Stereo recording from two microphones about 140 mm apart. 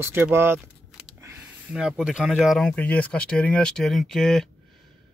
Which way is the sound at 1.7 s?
5° right (ahead or behind).